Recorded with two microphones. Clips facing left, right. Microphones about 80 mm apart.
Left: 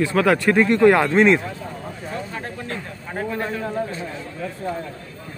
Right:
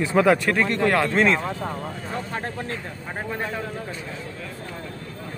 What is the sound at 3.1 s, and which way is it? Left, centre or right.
Speech, centre.